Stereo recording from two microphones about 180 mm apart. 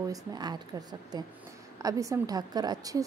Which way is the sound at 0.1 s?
20° right (ahead or behind).